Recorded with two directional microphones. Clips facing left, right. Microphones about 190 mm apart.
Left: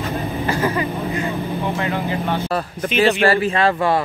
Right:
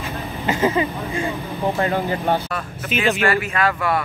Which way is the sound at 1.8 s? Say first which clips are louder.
Right 1 dB; 40° right (ahead or behind).